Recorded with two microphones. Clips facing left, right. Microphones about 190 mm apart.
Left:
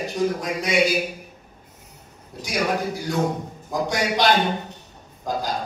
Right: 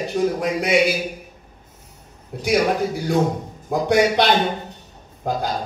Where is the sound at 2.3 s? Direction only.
60° right (ahead or behind).